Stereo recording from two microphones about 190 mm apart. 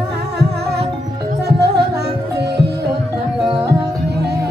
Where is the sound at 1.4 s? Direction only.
60° right (ahead or behind).